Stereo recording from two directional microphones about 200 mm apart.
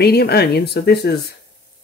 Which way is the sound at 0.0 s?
55° left (ahead or behind).